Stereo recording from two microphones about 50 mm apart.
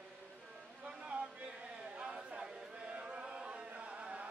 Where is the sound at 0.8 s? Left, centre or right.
Right.